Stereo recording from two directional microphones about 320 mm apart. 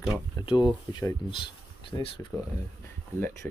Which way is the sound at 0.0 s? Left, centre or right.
Centre.